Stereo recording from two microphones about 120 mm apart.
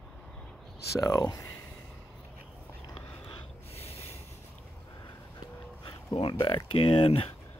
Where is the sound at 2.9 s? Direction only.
50° left (ahead or behind).